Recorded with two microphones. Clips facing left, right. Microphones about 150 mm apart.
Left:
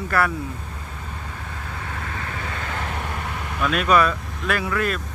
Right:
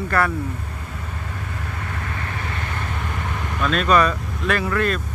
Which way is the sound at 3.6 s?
10° left (ahead or behind).